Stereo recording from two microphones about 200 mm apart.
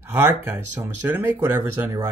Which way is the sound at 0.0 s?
10° right (ahead or behind).